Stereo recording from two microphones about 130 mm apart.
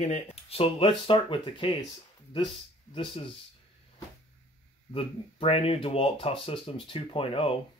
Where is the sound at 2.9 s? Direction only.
45° left (ahead or behind).